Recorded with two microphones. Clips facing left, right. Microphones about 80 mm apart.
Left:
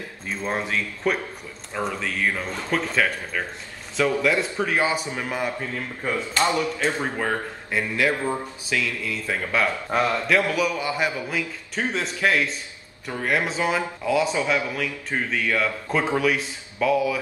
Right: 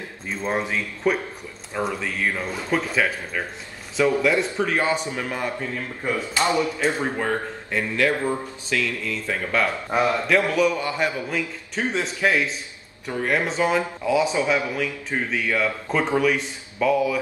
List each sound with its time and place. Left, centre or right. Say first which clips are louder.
0.5 s a man's voice: right 1 dB; centre
6.0 s speech: even; centre
7.2 s a man's voice: right 1 dB; centre
8.0 s a man's voice: right 3 dB; centre
9.8 s a man's voice: right 1 dB; centre